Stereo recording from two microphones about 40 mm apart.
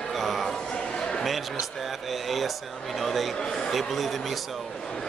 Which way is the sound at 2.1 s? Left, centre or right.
Centre.